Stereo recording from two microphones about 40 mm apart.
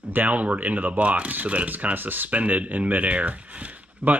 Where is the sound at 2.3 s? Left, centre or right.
Right.